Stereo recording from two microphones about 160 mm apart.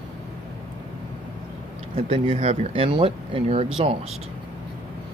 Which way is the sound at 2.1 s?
35° right (ahead or behind).